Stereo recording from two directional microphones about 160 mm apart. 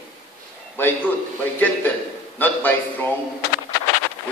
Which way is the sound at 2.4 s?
10° left (ahead or behind).